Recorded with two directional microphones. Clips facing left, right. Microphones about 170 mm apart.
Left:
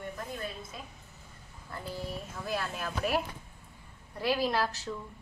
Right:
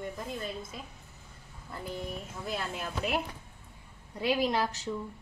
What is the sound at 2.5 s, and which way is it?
A woman's voice, 20° right (ahead or behind).